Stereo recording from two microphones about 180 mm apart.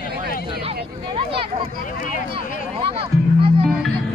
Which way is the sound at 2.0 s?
50° left (ahead or behind).